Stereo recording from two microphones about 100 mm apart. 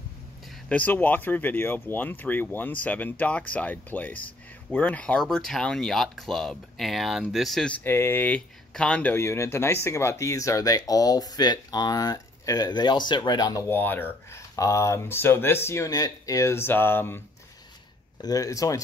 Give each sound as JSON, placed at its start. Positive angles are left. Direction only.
{"t": 0.7, "sound": "speech", "side_deg": 15}
{"t": 7.7, "sound": "speech", "side_deg": 25}
{"t": 9.1, "sound": "speech", "side_deg": 25}
{"t": 13.7, "sound": "speech", "side_deg": 20}
{"t": 14.5, "sound": "speech", "side_deg": 30}
{"t": 18.2, "sound": "speech", "side_deg": 35}